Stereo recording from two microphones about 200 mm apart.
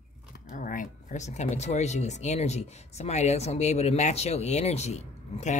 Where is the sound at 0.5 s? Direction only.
40° left (ahead or behind).